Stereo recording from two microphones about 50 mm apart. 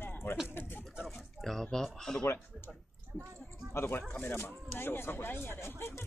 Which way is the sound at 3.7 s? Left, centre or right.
Left.